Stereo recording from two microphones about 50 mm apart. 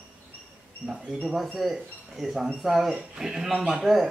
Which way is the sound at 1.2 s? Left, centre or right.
Centre.